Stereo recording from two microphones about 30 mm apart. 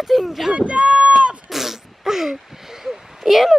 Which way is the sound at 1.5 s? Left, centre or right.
Centre.